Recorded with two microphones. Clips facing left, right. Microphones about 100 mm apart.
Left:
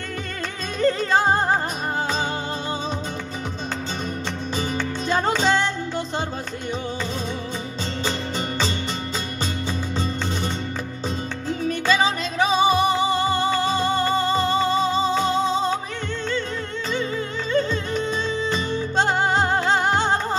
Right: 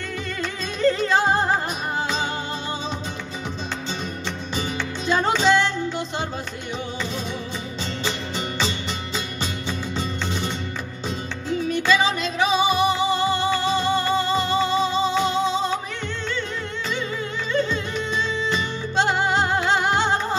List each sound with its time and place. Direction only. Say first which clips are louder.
0.7 s music: even; 40° left (ahead or behind)
4.6 s music: left 2 dB; 45° left (ahead or behind)
8.0 s music: left 2 dB; 40° left (ahead or behind)
17.5 s music: left 1 dB; 40° left (ahead or behind)